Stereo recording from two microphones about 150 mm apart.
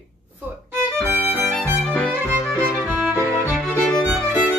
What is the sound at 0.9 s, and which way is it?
Violin, 15° left (ahead or behind).